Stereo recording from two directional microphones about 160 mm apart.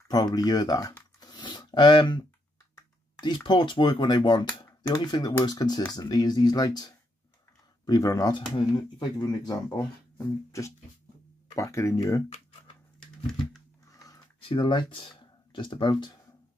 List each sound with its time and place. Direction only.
0.1 s speech: 25° left (ahead or behind)
10.1 s music: 20° left (ahead or behind)
11.5 s speech: 20° left (ahead or behind)
13.8 s a sound: 20° left (ahead or behind)
14.4 s speech: 30° left (ahead or behind)